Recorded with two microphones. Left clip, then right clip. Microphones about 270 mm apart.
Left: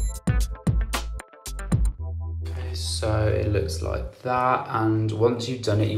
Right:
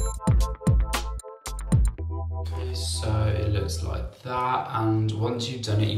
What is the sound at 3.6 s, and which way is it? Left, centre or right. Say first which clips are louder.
Speech: left 5 dB; centre.